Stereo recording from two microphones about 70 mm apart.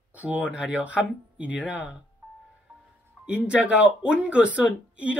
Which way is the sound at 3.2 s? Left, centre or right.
Centre.